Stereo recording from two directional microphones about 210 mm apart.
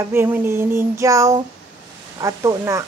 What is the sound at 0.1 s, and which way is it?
A woman's voice, 10° right (ahead or behind).